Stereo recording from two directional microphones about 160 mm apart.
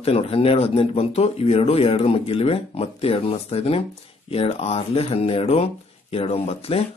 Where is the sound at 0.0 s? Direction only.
35° left (ahead or behind).